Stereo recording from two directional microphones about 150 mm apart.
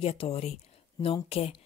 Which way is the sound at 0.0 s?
40° left (ahead or behind).